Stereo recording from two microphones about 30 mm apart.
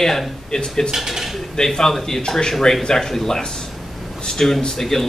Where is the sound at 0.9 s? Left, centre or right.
Centre.